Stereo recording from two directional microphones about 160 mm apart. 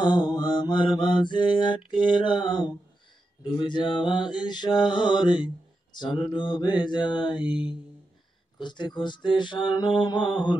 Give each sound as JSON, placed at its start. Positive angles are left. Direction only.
{"t": 0.0, "sound": "mantra", "side_deg": 30}